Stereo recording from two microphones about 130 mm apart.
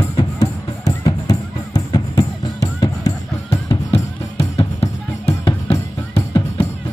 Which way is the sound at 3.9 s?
50° left (ahead or behind).